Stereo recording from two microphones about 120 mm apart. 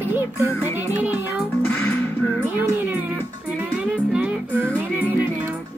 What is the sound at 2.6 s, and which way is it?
Music, 15° right (ahead or behind).